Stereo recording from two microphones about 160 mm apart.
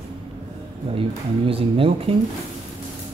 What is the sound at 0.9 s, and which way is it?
Speech, 35° right (ahead or behind).